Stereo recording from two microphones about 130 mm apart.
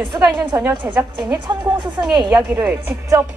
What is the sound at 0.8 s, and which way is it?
Speech, 15° right (ahead or behind).